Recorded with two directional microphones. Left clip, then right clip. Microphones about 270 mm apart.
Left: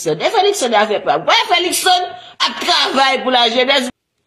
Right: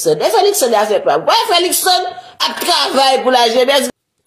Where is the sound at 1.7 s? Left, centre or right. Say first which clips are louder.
Even; left.